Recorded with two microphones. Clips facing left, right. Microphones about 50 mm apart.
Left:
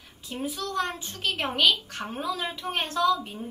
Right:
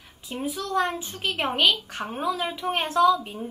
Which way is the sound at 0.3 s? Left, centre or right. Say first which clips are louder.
Right 3 dB; centre.